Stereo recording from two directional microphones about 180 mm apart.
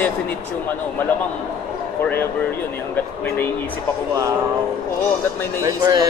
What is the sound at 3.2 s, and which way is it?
Speech, 10° left (ahead or behind).